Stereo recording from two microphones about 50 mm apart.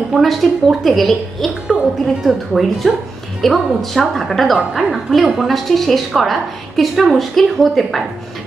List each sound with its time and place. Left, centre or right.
0.1 s a woman's voice: centre
4.6 s a woman's voice: centre
4.9 s a woman's voice: centre